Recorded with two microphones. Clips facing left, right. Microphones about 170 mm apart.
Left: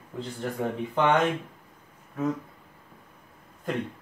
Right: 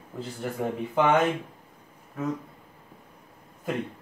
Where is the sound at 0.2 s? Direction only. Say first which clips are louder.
Even; 5° right (ahead or behind).